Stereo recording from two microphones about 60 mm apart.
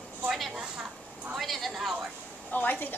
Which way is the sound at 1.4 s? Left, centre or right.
Centre.